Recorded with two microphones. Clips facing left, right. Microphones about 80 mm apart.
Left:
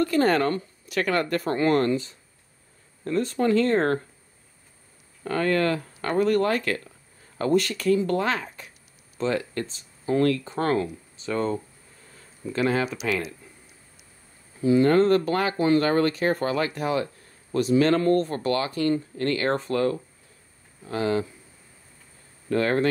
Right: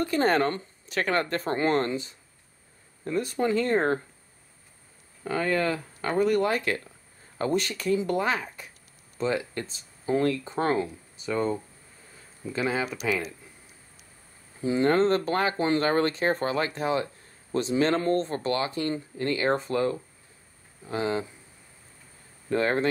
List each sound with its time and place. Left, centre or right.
0.0 s speech: right
5.2 s speech: centre
14.6 s speech: right
22.5 s speech: right